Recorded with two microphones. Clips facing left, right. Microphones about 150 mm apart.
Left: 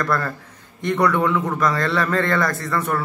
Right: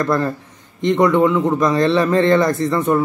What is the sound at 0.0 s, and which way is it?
A man's voice, 20° right (ahead or behind).